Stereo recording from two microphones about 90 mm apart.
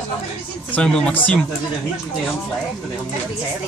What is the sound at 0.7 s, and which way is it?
Speech, 10° left (ahead or behind).